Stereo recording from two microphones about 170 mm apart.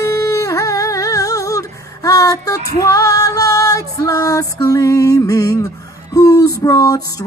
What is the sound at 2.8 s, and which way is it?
Music, 20° left (ahead or behind).